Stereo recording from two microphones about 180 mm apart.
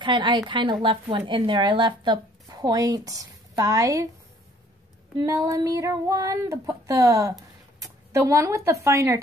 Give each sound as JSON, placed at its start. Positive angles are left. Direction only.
{"t": 0.0, "sound": "a woman's voice", "side_deg": -25}
{"t": 5.2, "sound": "a sound", "side_deg": -20}
{"t": 7.8, "sound": "speech", "side_deg": -20}